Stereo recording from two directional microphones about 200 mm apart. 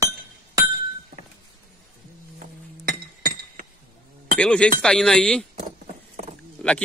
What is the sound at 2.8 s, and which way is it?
Chink, 45° right (ahead or behind).